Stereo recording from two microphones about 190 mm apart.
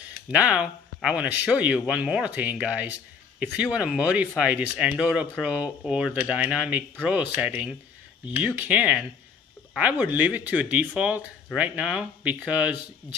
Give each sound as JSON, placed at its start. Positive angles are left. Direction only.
{"t": 0.3, "sound": "speech", "side_deg": -5}